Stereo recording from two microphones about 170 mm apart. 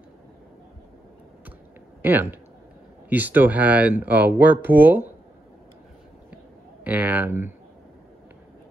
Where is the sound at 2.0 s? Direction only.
10° right (ahead or behind).